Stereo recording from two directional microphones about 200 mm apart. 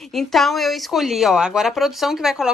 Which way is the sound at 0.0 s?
Centre (ahead or behind).